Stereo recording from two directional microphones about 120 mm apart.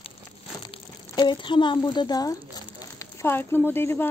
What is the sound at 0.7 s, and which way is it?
Speech, 40° left (ahead or behind).